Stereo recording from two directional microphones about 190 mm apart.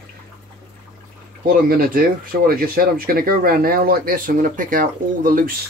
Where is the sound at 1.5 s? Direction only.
50° right (ahead or behind).